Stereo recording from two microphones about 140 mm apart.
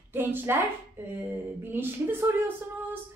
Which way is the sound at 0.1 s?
15° right (ahead or behind).